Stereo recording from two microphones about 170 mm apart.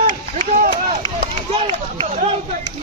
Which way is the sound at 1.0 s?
35° right (ahead or behind).